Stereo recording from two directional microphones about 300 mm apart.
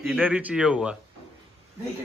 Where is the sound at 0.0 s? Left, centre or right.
Centre.